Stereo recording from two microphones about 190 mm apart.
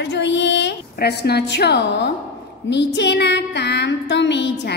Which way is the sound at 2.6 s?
65° left (ahead or behind).